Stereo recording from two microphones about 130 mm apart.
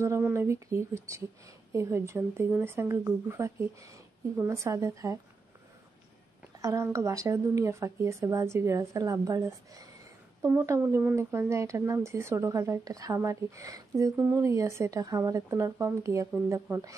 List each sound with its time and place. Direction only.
0.3 s speech: 20° right (ahead or behind)
6.6 s speech: 25° right (ahead or behind)